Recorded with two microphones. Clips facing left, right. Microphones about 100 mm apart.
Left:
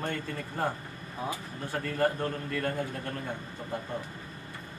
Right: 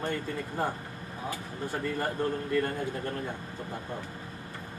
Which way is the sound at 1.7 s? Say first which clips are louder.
Left 3 dB; centre (ahead or behind).